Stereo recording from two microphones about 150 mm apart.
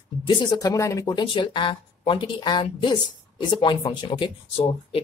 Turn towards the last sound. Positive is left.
turn(degrees=35)  # may be behind; listen again after turning